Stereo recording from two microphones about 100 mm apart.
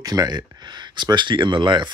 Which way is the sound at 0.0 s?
40° right (ahead or behind).